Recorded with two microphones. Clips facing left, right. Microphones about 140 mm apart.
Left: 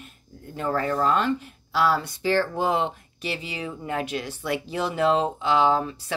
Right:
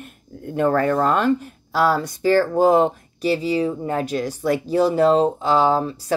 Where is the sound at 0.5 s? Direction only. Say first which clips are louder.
Right 7 dB; 55° right (ahead or behind).